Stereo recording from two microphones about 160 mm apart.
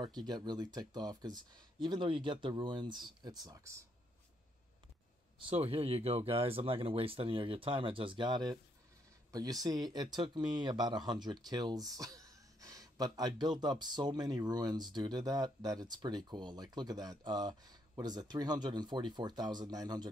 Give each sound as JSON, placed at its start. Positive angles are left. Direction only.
{"t": 0.0, "sound": "speech", "side_deg": -25}
{"t": 5.4, "sound": "speech", "side_deg": -35}